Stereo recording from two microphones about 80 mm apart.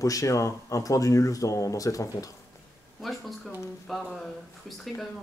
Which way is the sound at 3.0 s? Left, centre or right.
Centre.